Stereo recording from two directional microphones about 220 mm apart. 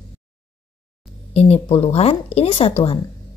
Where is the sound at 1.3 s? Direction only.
25° left (ahead or behind).